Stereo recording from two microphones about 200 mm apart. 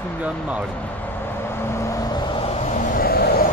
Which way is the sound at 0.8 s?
10° left (ahead or behind).